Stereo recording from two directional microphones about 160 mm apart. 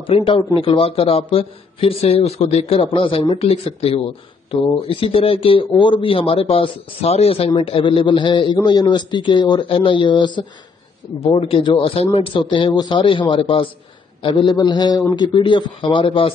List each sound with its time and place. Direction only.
0.0 s a man's voice: 35° left (ahead or behind)